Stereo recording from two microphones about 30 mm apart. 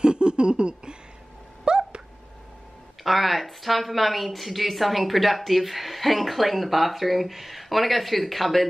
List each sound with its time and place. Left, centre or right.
0.0 s laughter: right
1.6 s a sound: right
3.0 s speech: centre